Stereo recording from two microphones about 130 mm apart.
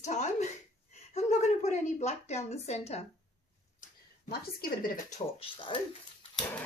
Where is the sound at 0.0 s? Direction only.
65° left (ahead or behind).